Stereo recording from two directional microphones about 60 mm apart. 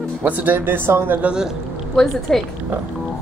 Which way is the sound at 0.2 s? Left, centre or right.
Right.